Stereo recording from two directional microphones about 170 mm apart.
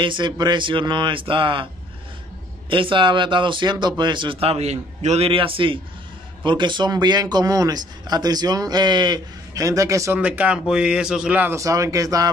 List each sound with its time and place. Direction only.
0.0 s speech: 25° right (ahead or behind)
2.7 s speech: 30° right (ahead or behind)